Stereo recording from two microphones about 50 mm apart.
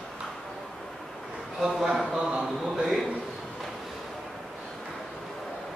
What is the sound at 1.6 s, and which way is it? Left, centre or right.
Mantra, centre.